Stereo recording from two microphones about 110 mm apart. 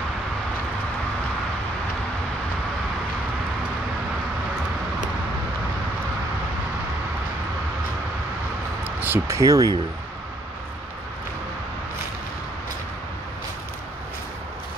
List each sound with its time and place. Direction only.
8.8 s speech: 20° right (ahead or behind)